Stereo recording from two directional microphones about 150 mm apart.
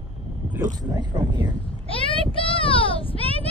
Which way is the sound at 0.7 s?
30° right (ahead or behind).